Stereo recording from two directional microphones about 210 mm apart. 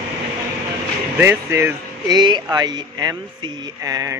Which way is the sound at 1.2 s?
10° right (ahead or behind).